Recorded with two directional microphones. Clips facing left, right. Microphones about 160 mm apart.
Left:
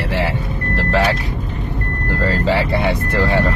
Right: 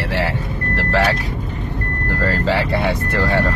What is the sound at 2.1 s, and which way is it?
Speech, 15° left (ahead or behind).